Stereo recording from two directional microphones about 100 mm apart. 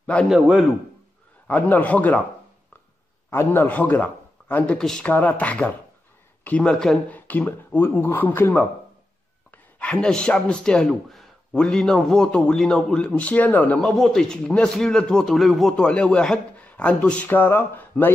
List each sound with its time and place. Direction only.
0.0 s a man's voice: 10° left (ahead or behind)
0.3 s a man's voice: 5° right (ahead or behind)
1.5 s speech: 15° left (ahead or behind)
3.3 s a man's voice: 25° left (ahead or behind); by 7.0 s 5° left (ahead or behind)
7.1 s speech: 15° left (ahead or behind)
9.8 s speech: 10° left (ahead or behind)
13.8 s speech: 5° left (ahead or behind); by 18.1 s 20° left (ahead or behind)